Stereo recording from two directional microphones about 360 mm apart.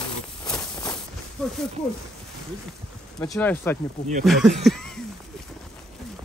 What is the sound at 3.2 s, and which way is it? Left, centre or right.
Speech, centre.